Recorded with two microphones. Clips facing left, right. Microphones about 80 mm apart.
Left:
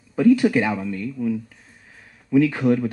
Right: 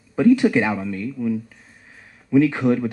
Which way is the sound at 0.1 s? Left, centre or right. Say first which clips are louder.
Right 1 dB; right.